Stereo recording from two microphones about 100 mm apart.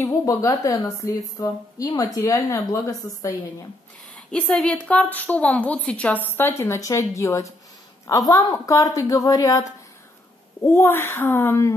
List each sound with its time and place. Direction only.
0.0 s a woman's voice: 30° left (ahead or behind)
4.1 s a woman's voice: 10° left (ahead or behind); by 11.7 s 25° left (ahead or behind)